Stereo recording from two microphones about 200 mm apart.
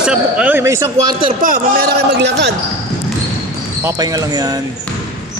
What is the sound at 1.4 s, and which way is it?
A man's voice, 45° right (ahead or behind).